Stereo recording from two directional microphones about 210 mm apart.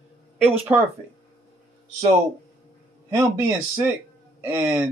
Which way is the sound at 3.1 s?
10° right (ahead or behind).